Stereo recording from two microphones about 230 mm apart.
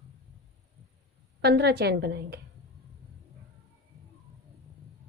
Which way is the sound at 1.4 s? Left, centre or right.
Right.